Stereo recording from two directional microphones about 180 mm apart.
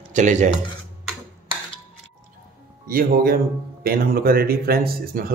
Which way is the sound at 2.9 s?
55° right (ahead or behind).